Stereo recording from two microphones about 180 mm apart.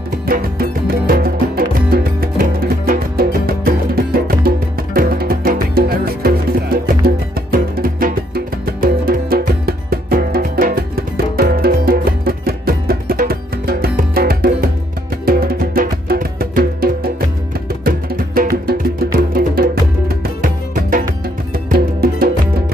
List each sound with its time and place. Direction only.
0.3 s music: 55° right (ahead or behind)